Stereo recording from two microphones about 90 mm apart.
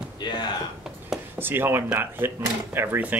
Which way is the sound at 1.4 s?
25° right (ahead or behind).